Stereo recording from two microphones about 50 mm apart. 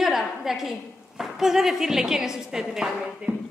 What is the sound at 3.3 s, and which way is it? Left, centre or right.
Speech, right.